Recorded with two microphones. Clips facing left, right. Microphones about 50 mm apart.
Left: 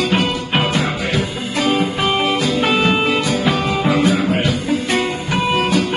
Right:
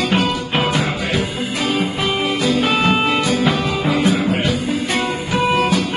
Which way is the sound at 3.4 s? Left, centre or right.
Centre.